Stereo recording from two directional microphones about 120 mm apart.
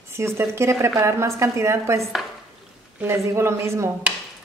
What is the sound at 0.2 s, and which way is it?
A woman's voice, 20° right (ahead or behind).